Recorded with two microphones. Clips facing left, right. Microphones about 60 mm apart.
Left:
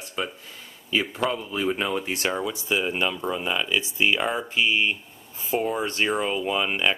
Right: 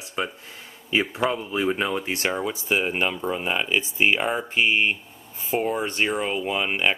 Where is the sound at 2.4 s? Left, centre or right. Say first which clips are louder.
Right 1 dB; right.